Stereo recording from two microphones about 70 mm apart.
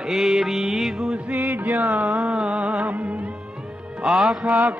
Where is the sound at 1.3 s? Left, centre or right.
Right.